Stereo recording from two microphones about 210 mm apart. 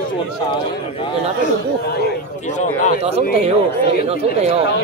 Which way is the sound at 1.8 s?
50° left (ahead or behind).